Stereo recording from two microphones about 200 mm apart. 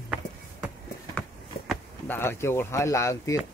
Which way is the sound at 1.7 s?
10° left (ahead or behind).